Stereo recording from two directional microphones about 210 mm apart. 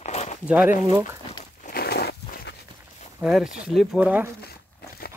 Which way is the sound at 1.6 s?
50° left (ahead or behind).